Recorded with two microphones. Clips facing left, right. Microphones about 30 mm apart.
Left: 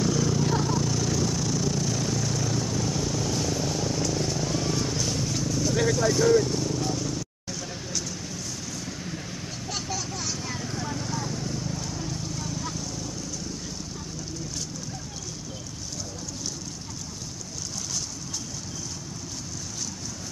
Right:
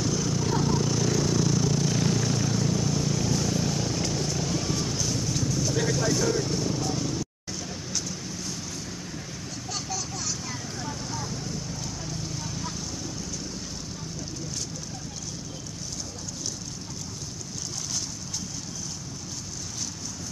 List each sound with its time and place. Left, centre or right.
0.0 s a sound: centre
1.9 s vehicle: right
2.5 s vehicle: centre
6.4 s vehicle: centre
10.8 s a sound: centre
12.5 s vehicle: centre